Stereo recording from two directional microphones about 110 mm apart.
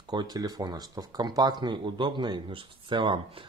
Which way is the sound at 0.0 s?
40° right (ahead or behind).